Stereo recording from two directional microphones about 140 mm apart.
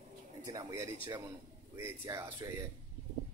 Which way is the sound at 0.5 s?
25° right (ahead or behind).